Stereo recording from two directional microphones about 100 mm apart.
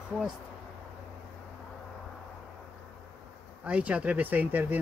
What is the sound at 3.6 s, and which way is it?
Speech, 15° right (ahead or behind).